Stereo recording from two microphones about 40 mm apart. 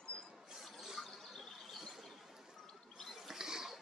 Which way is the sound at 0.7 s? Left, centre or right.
Centre.